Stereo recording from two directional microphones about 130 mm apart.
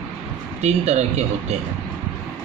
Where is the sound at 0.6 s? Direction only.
60° right (ahead or behind).